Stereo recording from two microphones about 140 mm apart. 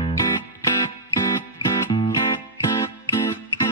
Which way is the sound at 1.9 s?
30° left (ahead or behind).